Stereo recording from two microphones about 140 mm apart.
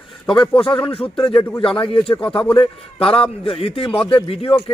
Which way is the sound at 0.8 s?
40° left (ahead or behind).